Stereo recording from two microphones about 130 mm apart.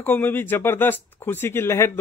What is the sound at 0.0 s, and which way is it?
Speech, 15° left (ahead or behind).